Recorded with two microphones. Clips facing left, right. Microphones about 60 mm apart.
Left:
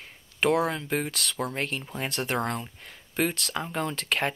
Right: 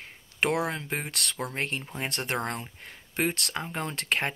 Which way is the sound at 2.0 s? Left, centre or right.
Right.